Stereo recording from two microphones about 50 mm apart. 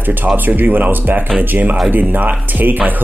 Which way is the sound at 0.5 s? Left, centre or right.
Right.